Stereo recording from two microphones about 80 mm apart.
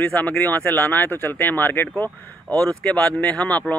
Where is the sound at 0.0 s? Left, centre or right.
Centre.